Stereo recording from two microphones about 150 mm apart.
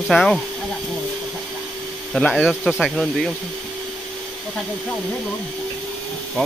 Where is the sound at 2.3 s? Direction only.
5° right (ahead or behind).